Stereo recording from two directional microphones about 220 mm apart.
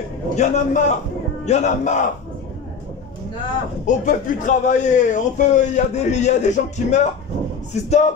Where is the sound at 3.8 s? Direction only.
35° left (ahead or behind).